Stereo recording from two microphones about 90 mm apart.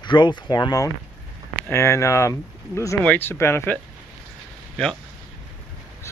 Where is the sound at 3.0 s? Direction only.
25° left (ahead or behind).